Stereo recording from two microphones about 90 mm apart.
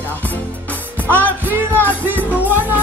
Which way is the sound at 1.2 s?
20° right (ahead or behind).